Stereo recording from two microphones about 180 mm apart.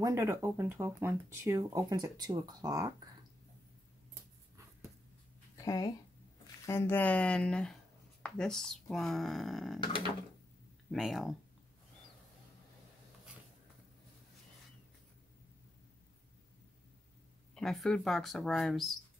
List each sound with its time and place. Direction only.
0.0 s speech: 15° right (ahead or behind)
5.6 s speech: 20° left (ahead or behind); by 9.8 s centre (ahead or behind)
10.9 s speech: centre (ahead or behind)
17.6 s speech: 5° left (ahead or behind)